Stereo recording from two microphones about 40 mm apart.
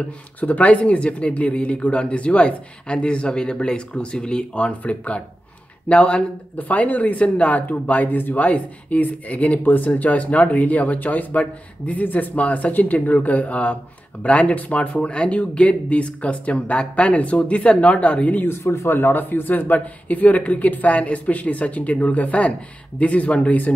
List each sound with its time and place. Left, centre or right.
0.4 s speech: left
6.7 s speech: left
18.4 s speech: left